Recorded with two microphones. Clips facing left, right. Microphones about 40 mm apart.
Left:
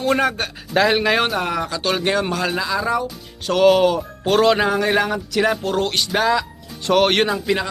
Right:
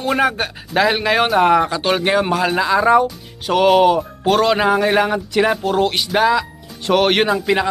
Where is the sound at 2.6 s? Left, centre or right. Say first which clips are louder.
Right 7 dB; right.